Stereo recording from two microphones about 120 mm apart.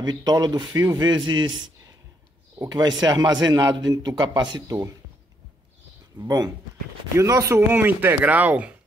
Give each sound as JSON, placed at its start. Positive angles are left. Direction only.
{"t": 0.0, "sound": "a man's voice", "side_deg": -35}
{"t": 3.0, "sound": "a man's voice", "side_deg": -35}
{"t": 6.1, "sound": "speech", "side_deg": -30}